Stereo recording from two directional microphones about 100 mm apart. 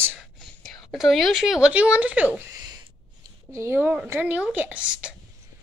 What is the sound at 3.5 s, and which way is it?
A woman's voice, 25° right (ahead or behind).